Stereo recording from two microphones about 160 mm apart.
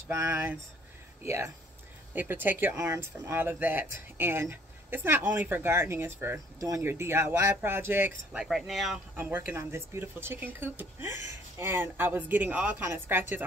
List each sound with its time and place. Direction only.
0.1 s speech: 15° right (ahead or behind); by 9.0 s centre (ahead or behind)
9.1 s speech: 10° right (ahead or behind)